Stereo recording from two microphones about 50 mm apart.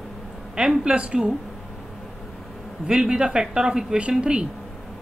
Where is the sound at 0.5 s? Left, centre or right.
Centre.